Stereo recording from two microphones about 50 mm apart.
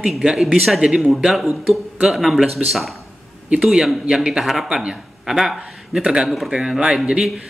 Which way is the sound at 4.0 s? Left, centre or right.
Centre.